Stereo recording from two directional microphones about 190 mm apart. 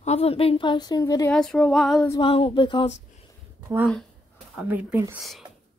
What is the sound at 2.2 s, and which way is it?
Speech, 30° left (ahead or behind).